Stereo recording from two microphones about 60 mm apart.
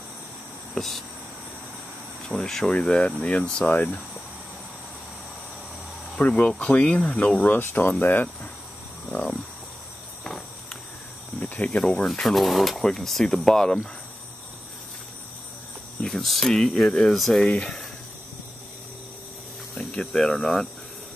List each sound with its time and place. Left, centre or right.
0.7 s insect: centre
2.2 s speech: centre; by 4.0 s left
6.1 s speech: centre
7.5 s speech: left
10.2 s walk: centre
11.3 s speech: left
11.8 s speech: centre
16.0 s speech: centre
19.7 s speech: centre